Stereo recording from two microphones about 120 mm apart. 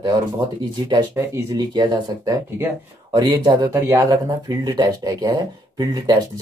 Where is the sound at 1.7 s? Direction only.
35° right (ahead or behind).